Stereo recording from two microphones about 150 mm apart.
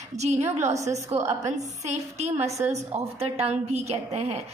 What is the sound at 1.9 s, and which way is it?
A woman's voice, 45° right (ahead or behind).